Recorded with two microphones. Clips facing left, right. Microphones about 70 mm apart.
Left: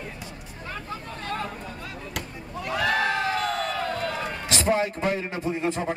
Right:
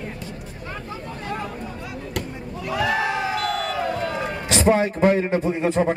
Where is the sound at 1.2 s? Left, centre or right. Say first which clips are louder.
Right 1 dB; centre.